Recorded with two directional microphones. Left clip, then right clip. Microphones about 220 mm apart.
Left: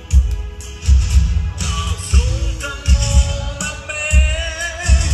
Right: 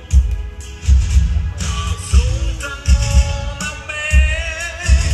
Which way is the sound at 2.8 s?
20° right (ahead or behind).